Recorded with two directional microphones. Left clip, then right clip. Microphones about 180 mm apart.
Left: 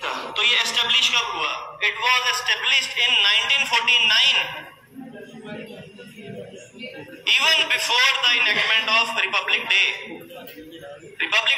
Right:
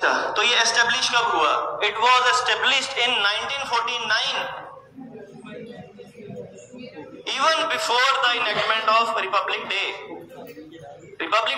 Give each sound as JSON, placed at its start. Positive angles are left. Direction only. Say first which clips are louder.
{"t": 0.0, "sound": "a man's voice", "louder": "right 2 dB", "side_deg": -45}
{"t": 7.2, "sound": "a man's voice", "louder": "left 3 dB", "side_deg": -30}
{"t": 11.1, "sound": "a sound", "louder": "left 2 dB", "side_deg": -30}